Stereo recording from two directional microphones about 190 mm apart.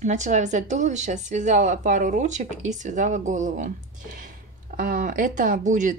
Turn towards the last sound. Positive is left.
turn(degrees=-40)  # may be behind; listen again after turning